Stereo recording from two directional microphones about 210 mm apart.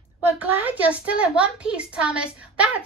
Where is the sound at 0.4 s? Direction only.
5° right (ahead or behind).